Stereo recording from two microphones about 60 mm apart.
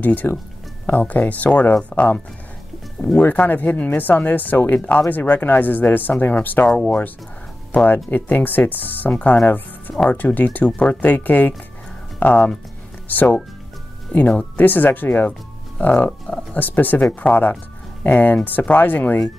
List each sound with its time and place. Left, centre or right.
0.0 s speech: left
3.3 s speech: left
7.7 s speech: left
16.5 s speech: left